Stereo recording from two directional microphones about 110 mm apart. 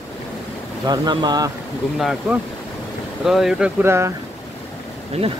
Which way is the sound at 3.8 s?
25° right (ahead or behind).